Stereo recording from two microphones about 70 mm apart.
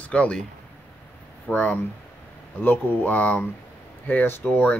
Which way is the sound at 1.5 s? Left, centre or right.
Centre.